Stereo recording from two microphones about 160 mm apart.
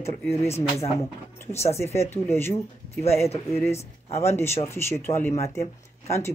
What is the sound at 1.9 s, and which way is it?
Speech, 40° left (ahead or behind).